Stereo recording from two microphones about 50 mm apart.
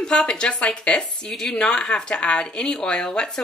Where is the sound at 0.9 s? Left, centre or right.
Centre.